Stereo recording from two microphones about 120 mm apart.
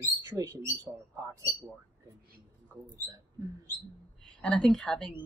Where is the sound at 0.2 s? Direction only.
25° right (ahead or behind).